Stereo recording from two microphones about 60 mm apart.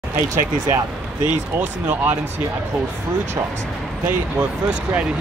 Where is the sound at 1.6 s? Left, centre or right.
Right.